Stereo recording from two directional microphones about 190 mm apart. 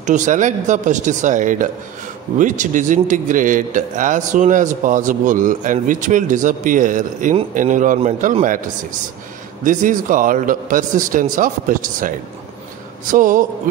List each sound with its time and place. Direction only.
0.0 s a man's voice: 40° right (ahead or behind)
9.7 s a man's voice: 45° right (ahead or behind)
13.1 s a man's voice: 45° right (ahead or behind)